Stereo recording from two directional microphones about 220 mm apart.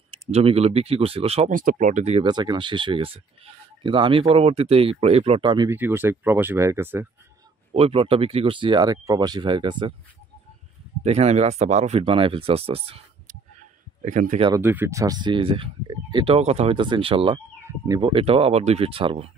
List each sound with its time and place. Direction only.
0.3 s speech: 30° right (ahead or behind); by 7.1 s 10° right (ahead or behind)
7.7 s speech: 25° right (ahead or behind)
11.1 s speech: 30° right (ahead or behind)
14.4 s speech: 15° right (ahead or behind)
17.6 s speech: 15° right (ahead or behind)